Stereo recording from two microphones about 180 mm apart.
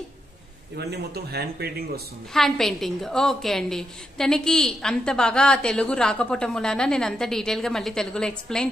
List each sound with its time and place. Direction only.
0.7 s speech: 65° right (ahead or behind)
2.3 s a woman's voice: centre (ahead or behind)